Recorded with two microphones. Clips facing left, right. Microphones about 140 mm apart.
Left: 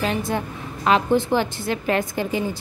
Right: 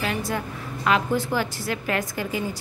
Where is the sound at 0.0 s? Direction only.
25° left (ahead or behind).